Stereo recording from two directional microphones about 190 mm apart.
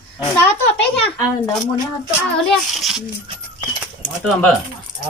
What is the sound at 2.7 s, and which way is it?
Speech, centre (ahead or behind).